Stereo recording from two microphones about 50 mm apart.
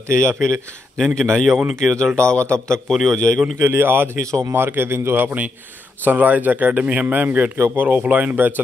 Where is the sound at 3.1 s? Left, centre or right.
Centre.